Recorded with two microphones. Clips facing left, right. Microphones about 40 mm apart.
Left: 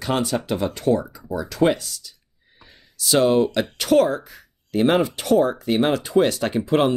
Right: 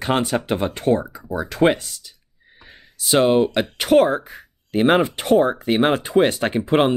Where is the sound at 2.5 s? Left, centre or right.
Right.